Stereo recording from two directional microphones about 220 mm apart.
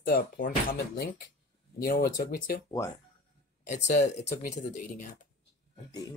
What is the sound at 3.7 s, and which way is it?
Speech, 30° left (ahead or behind).